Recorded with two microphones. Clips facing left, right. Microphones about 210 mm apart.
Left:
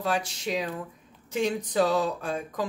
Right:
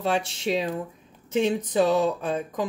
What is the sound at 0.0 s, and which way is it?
Speech, 25° right (ahead or behind).